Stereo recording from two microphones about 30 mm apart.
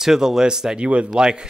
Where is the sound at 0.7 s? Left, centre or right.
Right.